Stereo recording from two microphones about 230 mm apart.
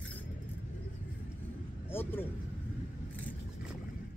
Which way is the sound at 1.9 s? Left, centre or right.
Centre.